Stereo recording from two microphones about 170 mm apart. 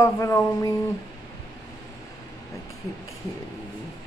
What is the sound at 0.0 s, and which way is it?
Speech, 20° left (ahead or behind).